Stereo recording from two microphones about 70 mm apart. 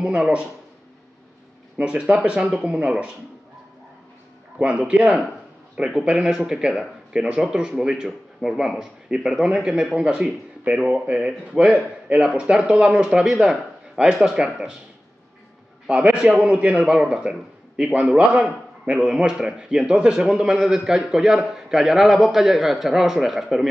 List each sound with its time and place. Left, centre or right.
0.0 s speech: centre
1.8 s speech: centre
4.6 s speech: centre
15.9 s speech: centre